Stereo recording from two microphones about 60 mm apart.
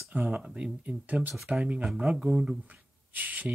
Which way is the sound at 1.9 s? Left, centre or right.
Centre.